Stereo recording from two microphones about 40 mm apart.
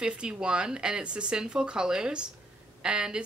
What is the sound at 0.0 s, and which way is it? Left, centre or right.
Speech, right.